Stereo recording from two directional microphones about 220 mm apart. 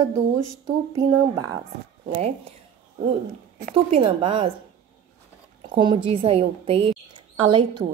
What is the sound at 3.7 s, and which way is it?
Speech, 25° right (ahead or behind).